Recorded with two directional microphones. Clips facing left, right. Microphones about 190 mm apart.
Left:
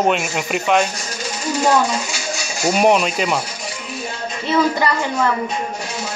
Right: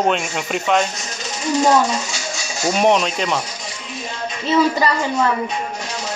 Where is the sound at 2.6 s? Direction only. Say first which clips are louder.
Left 1 dB; 5° left (ahead or behind).